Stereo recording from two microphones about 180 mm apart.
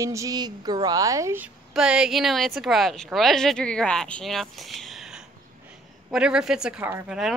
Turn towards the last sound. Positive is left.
turn(degrees=-5)  # may be behind; listen again after turning